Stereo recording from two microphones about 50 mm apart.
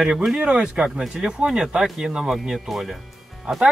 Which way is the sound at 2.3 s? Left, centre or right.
Centre.